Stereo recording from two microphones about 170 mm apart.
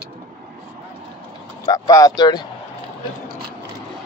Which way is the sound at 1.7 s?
20° left (ahead or behind).